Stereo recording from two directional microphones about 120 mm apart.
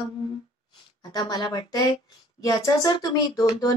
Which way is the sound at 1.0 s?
30° left (ahead or behind).